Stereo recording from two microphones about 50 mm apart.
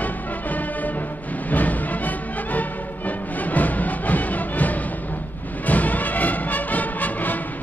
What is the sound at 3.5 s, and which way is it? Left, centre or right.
Music, left.